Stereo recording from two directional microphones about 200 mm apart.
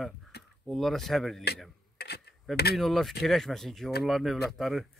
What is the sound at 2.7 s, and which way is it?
Speech, centre (ahead or behind).